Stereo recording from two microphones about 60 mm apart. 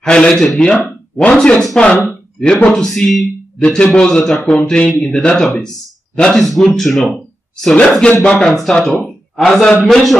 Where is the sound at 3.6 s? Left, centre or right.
Centre.